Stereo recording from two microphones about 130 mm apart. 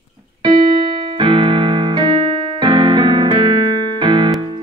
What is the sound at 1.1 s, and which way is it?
Keyboard, 40° right (ahead or behind).